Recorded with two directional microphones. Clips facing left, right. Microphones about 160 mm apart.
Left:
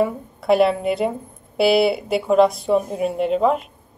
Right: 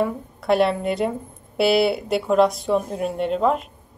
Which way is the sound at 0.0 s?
Centre (ahead or behind).